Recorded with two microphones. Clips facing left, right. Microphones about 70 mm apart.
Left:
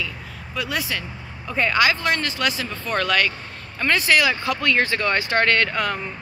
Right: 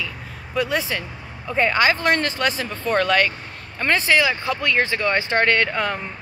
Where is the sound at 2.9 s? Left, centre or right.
Right.